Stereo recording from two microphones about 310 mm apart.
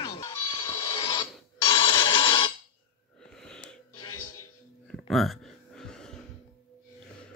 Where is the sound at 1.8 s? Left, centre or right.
Centre.